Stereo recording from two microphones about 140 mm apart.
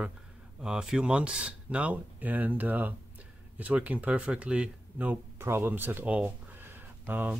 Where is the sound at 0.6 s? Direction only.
5° right (ahead or behind).